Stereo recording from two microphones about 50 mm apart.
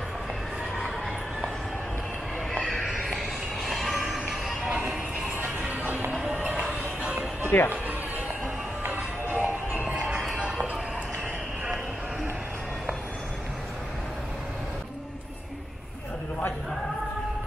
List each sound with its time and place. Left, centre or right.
2.6 s music: centre
5.6 s music: right
7.5 s speech: left
8.8 s music: right